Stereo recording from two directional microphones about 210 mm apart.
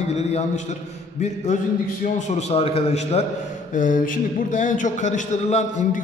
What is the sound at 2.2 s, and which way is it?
A man's voice, 30° left (ahead or behind).